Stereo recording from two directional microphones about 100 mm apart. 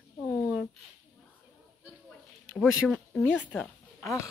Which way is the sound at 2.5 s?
Centre (ahead or behind).